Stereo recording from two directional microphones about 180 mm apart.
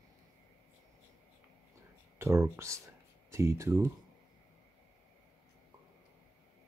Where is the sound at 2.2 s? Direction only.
15° right (ahead or behind).